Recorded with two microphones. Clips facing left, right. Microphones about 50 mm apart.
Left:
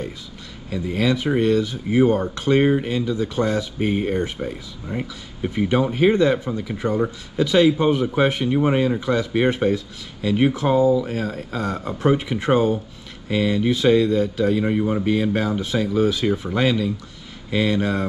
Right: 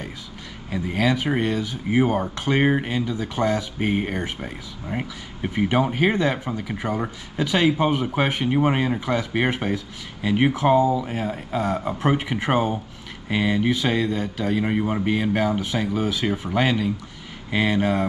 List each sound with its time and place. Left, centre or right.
0.7 s speech: right
10.8 s speech: right
16.5 s speech: right